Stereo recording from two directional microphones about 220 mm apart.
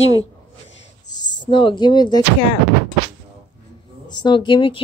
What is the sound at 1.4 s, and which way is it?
Speech, 20° left (ahead or behind).